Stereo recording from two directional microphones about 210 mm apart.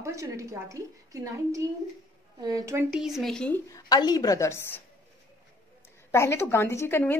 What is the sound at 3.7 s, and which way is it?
A woman's voice, 20° left (ahead or behind).